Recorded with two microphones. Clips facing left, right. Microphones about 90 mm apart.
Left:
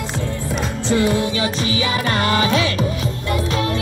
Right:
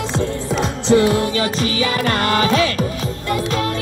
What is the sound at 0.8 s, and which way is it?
Music, 50° right (ahead or behind).